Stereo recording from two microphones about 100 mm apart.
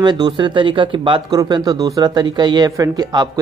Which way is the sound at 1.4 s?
40° right (ahead or behind).